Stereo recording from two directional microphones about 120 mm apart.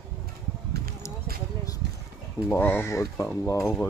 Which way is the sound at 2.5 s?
15° left (ahead or behind).